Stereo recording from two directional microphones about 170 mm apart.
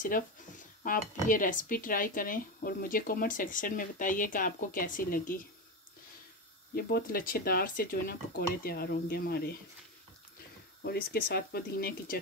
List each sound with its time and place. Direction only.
0.0 s speech: 50° left (ahead or behind)
6.7 s speech: 65° left (ahead or behind)
10.8 s speech: 70° left (ahead or behind)